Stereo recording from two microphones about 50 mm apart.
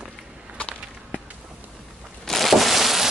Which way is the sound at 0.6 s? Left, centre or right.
Left.